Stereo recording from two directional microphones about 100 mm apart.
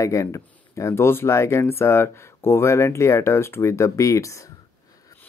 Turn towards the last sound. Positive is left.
turn(degrees=30)  # may be behind; listen again after turning